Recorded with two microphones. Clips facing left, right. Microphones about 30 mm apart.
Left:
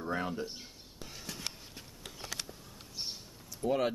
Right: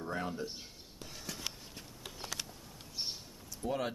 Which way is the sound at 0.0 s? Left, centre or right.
Centre.